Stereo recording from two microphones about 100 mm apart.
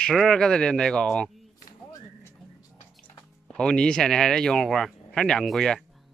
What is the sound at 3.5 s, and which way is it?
Speech, 10° left (ahead or behind).